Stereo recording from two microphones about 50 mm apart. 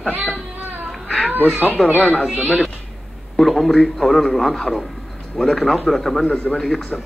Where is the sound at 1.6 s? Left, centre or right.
Left.